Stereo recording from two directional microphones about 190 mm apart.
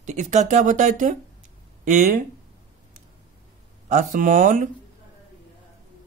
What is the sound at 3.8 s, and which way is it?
Speech, 40° right (ahead or behind).